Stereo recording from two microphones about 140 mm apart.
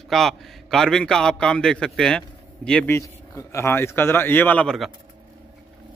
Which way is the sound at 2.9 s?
20° left (ahead or behind).